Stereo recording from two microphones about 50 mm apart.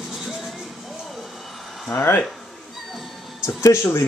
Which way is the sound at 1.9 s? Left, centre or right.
Left.